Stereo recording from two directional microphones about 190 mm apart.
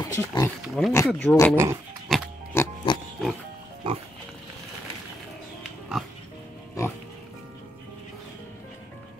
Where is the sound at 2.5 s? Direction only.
15° left (ahead or behind).